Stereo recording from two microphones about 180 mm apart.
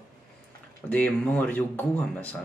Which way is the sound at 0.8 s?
10° left (ahead or behind).